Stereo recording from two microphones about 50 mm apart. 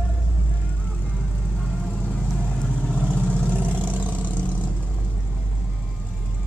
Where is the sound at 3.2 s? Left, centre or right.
Right.